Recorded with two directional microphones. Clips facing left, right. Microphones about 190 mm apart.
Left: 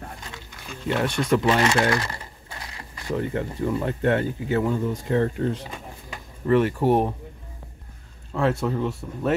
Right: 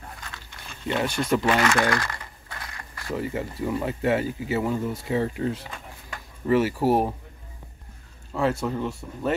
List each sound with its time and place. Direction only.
0.7 s speech: centre (ahead or behind)
1.6 s typing: 20° left (ahead or behind)
3.2 s speech: 5° right (ahead or behind)
8.3 s speech: centre (ahead or behind)